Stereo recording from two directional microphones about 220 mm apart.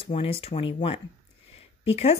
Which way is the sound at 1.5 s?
25° left (ahead or behind).